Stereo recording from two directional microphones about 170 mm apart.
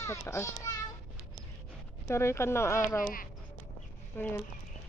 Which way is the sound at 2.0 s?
15° left (ahead or behind).